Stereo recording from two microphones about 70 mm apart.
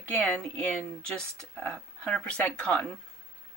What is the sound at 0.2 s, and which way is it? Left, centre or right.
Speech, left.